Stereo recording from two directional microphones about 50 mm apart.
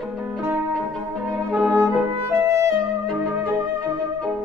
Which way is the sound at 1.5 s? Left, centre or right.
Right.